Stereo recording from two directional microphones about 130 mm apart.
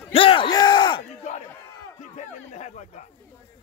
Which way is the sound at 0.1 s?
45° left (ahead or behind).